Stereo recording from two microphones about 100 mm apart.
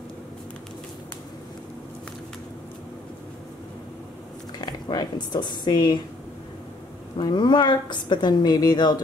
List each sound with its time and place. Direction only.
4.6 s speech: 45° left (ahead or behind)
7.2 s a woman's voice: 45° left (ahead or behind)